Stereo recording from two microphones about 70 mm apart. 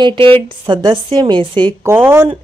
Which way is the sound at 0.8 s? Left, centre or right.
Right.